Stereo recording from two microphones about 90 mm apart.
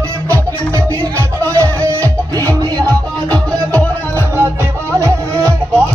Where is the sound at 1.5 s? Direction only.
35° right (ahead or behind).